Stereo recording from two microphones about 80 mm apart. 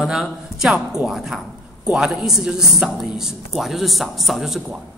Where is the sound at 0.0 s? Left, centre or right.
Centre.